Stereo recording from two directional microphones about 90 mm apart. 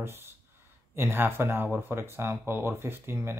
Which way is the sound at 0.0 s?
25° right (ahead or behind).